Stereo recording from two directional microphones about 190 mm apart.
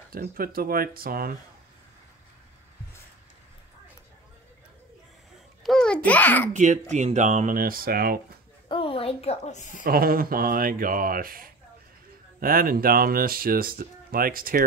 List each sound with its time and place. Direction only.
0.1 s speech: 50° right (ahead or behind)
5.6 s babbling: 5° left (ahead or behind)
6.0 s a child's voice: 10° left (ahead or behind)
6.5 s speech: 40° right (ahead or behind)
8.6 s a sound: 30° left (ahead or behind)
9.8 s speech: 50° right (ahead or behind)